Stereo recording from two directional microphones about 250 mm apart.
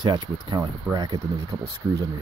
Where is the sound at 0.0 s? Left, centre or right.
Centre.